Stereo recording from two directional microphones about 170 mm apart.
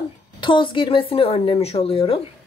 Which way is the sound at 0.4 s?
30° left (ahead or behind).